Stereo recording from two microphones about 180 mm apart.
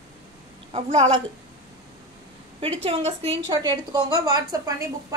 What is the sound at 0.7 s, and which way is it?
Speech, 35° right (ahead or behind).